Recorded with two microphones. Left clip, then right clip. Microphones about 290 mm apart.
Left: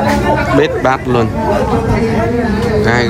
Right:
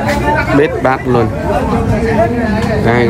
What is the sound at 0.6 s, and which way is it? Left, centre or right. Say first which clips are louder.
Speech: even; centre.